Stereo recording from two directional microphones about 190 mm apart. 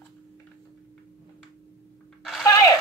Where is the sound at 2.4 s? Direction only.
15° left (ahead or behind).